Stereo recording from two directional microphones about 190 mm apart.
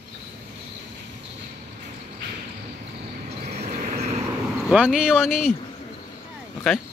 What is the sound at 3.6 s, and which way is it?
Vehicle, 40° right (ahead or behind).